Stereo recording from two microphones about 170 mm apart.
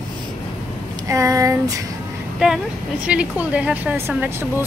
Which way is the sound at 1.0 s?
20° right (ahead or behind).